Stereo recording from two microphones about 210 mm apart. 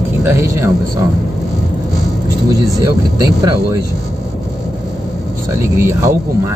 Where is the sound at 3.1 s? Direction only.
15° right (ahead or behind).